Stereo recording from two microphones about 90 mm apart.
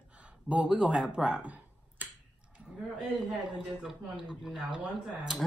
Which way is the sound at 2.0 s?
20° right (ahead or behind).